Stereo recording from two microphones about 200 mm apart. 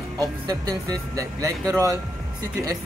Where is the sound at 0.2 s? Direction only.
20° right (ahead or behind).